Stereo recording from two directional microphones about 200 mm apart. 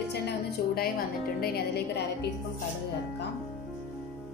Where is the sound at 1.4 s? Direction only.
50° left (ahead or behind).